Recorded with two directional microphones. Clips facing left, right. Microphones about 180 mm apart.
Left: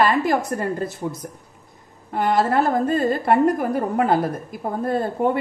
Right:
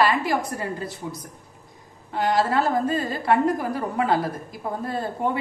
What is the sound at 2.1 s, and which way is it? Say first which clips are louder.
A woman's voice: left 3 dB; 50° left (ahead or behind).